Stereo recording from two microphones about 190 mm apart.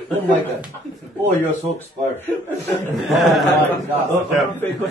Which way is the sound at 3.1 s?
Centre (ahead or behind).